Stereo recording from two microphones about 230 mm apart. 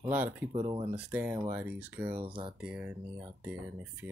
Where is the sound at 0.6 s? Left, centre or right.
Centre.